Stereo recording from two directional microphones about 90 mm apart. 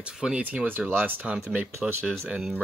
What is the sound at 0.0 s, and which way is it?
Speech, 10° right (ahead or behind).